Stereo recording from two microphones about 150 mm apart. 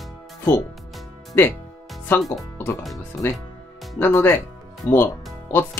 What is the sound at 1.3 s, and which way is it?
Speech, 15° left (ahead or behind).